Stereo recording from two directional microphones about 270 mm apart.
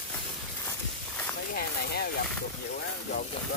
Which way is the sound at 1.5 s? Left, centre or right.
Left.